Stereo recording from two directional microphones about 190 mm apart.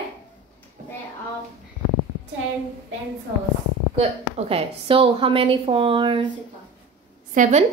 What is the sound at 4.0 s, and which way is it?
A woman's voice, 30° right (ahead or behind).